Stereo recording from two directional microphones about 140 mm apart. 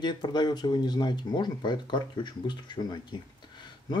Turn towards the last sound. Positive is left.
turn(degrees=30)  # may be behind; listen again after turning